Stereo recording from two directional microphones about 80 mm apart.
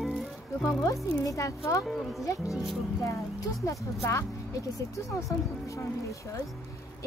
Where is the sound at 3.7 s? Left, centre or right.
Left.